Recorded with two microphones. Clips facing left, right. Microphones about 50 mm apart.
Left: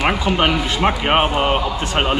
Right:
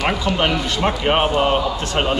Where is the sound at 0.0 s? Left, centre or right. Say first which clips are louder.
Left 2 dB; centre.